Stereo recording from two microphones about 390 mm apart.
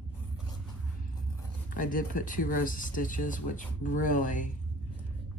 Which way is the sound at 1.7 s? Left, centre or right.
Centre.